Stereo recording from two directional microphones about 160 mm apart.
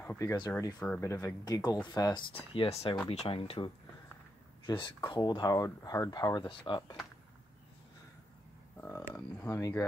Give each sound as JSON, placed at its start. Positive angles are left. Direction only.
{"t": 0.2, "sound": "speech", "side_deg": 20}
{"t": 0.7, "sound": "speech", "side_deg": 10}
{"t": 1.1, "sound": "speech", "side_deg": 25}
{"t": 9.1, "sound": "speech", "side_deg": 20}